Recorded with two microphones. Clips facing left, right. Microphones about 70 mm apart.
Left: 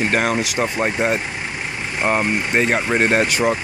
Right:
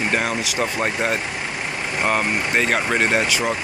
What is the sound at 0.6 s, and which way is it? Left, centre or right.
Speech, centre.